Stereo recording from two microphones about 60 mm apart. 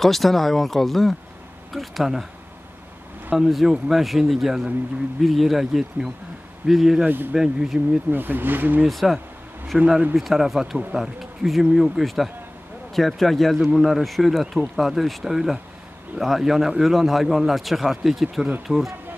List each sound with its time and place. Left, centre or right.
0.0 s a man's voice: centre
3.3 s a man's voice: centre
8.1 s speech: right
8.8 s a man's voice: centre
9.7 s speech: centre
10.1 s a man's voice: centre